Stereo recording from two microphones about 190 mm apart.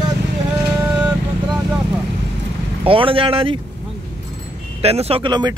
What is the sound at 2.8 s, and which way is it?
Speech, 30° right (ahead or behind).